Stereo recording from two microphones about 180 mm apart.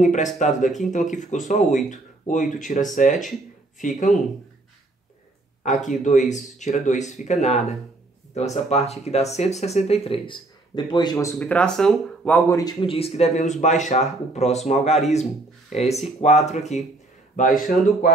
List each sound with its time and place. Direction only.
0.0 s speech: 45° left (ahead or behind)
5.6 s speech: 45° left (ahead or behind); by 12.7 s 15° left (ahead or behind)
12.8 s speech: 30° left (ahead or behind)